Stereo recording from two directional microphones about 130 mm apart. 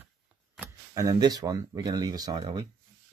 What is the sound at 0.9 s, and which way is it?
Speech, 25° right (ahead or behind).